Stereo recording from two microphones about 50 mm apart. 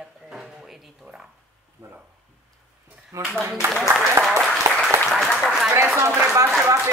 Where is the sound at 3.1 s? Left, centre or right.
Right.